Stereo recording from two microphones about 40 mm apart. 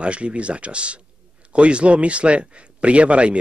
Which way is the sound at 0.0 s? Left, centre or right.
Right.